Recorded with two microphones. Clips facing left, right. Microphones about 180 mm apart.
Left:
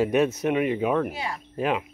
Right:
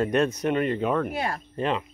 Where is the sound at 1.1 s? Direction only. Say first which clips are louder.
Right 4 dB; 55° right (ahead or behind).